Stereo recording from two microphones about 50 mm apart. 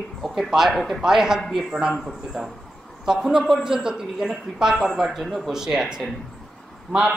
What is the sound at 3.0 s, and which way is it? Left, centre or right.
A man's voice, centre.